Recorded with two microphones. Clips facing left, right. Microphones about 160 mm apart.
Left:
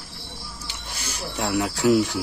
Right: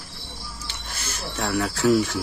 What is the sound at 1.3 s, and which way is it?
Speech, 20° left (ahead or behind).